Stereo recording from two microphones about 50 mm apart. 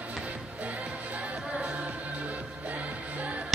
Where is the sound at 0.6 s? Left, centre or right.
Right.